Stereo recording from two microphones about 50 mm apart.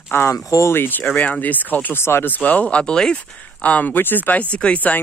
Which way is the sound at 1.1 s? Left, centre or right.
Left.